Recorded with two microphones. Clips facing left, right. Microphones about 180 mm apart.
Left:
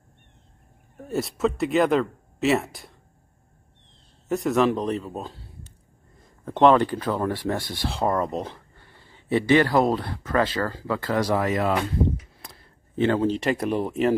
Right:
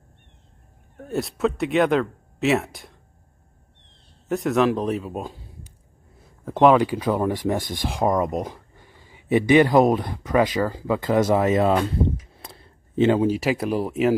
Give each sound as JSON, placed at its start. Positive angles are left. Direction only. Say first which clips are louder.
{"t": 0.9, "sound": "speech", "louder": "right 1 dB", "side_deg": 0}
{"t": 4.3, "sound": "speech", "louder": "right 1 dB", "side_deg": 0}